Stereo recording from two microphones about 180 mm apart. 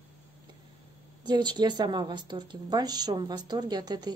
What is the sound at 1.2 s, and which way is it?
A woman's voice, 25° right (ahead or behind).